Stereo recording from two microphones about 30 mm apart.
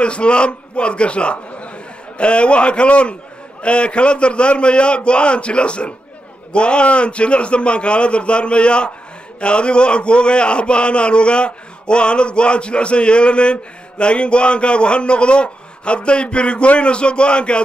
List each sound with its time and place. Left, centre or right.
0.0 s a man's voice: left